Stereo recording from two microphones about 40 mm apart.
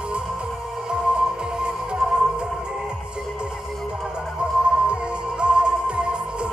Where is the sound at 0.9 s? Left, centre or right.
Centre.